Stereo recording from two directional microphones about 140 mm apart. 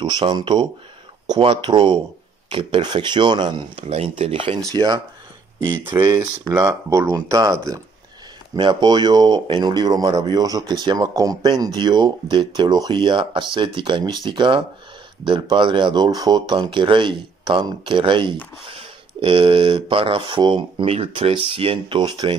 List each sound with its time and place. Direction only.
0.0 s speech: 30° right (ahead or behind)
3.8 s speech: 45° right (ahead or behind)
4.6 s speech: 30° right (ahead or behind)
5.9 s speech: 15° right (ahead or behind); by 22.2 s 35° right (ahead or behind)